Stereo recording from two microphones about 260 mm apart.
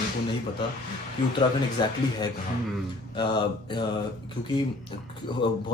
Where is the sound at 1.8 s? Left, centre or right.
Centre.